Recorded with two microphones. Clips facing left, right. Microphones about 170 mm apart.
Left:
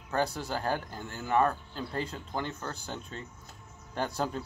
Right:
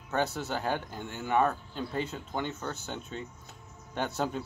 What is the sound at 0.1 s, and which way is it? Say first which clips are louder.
Speech: even; 5° right (ahead or behind).